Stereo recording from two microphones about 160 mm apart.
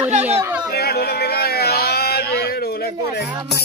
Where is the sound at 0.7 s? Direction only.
75° left (ahead or behind).